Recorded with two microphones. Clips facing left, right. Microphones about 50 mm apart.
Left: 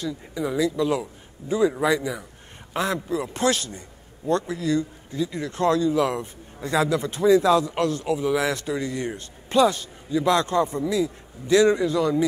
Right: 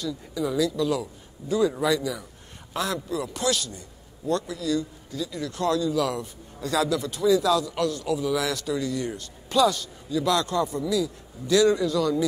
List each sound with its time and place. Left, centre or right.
0.0 s speech: left